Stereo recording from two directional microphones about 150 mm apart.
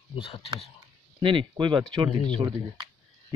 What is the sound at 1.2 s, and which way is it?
Speech, 35° right (ahead or behind).